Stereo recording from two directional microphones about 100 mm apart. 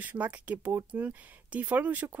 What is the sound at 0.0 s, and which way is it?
A woman's voice, 15° right (ahead or behind).